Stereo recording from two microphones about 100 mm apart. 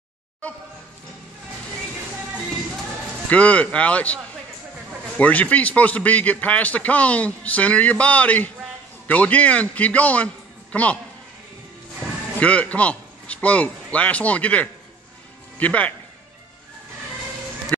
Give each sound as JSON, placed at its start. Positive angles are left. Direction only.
{"t": 3.3, "sound": "a man's voice", "side_deg": 15}
{"t": 12.4, "sound": "a man's voice", "side_deg": 15}